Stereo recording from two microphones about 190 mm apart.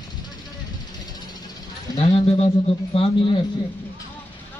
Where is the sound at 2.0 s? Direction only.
30° left (ahead or behind).